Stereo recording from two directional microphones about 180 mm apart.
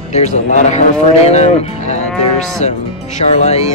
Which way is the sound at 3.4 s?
35° left (ahead or behind).